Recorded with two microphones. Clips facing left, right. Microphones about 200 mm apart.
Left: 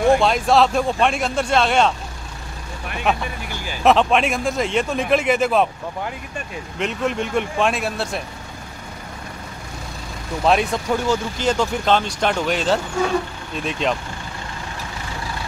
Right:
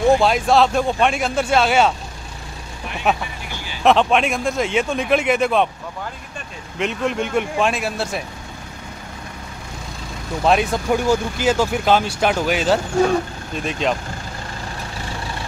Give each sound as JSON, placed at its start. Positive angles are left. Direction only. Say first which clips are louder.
{"t": 0.2, "sound": "speech", "louder": "right 1 dB", "side_deg": 0}
{"t": 3.1, "sound": "speech", "louder": "right 1 dB", "side_deg": -5}
{"t": 3.5, "sound": "vehicle", "louder": "left 3 dB", "side_deg": 45}
{"t": 3.8, "sound": "speech", "louder": "even", "side_deg": 0}
{"t": 6.8, "sound": "speech", "louder": "right 1 dB", "side_deg": 0}
{"t": 10.4, "sound": "speech", "louder": "right 1 dB", "side_deg": 0}